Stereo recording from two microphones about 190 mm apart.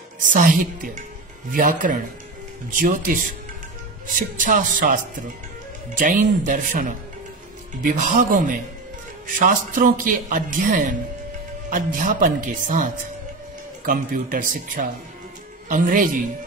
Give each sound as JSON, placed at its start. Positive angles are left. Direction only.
{"t": 0.2, "sound": "a man's voice", "side_deg": -45}